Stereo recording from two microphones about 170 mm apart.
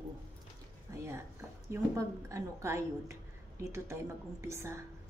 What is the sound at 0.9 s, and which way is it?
A woman's voice, 15° right (ahead or behind).